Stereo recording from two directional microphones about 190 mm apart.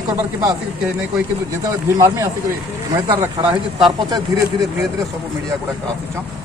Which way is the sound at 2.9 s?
25° right (ahead or behind).